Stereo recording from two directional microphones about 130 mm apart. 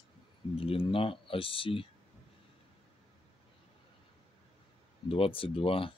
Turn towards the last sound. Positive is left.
turn(degrees=45)  # may be behind; listen again after turning